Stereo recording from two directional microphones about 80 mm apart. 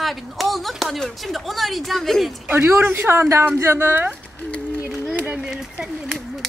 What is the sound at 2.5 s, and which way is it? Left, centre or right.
Speech, right.